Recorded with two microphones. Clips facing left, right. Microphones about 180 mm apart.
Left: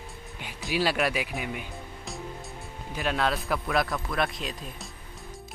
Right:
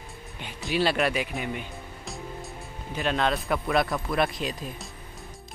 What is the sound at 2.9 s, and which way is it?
Speech, 5° left (ahead or behind).